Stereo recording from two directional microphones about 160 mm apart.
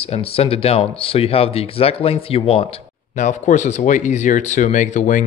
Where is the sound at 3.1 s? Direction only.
50° left (ahead or behind).